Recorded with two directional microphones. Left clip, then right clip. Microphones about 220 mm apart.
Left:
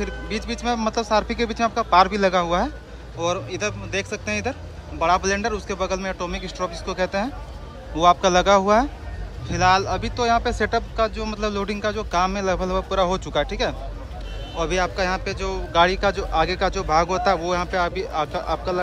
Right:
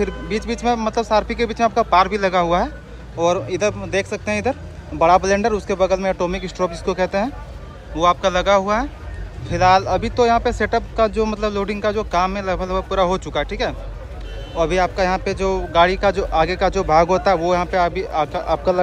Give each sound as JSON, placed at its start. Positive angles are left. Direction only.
{"t": 0.0, "sound": "speech", "side_deg": 10}